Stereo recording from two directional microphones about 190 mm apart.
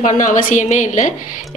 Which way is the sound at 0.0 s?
45° left (ahead or behind).